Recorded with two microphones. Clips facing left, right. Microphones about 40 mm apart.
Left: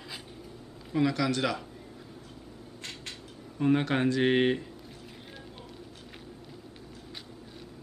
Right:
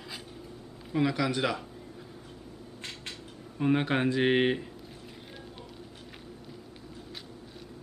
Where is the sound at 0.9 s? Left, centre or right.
Centre.